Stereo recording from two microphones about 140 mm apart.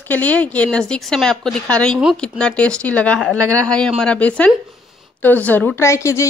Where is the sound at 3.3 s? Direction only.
20° right (ahead or behind).